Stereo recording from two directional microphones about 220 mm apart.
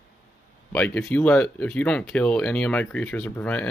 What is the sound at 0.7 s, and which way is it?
Speech, 5° left (ahead or behind).